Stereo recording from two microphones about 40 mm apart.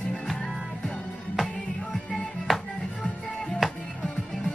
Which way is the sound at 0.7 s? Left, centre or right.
Centre.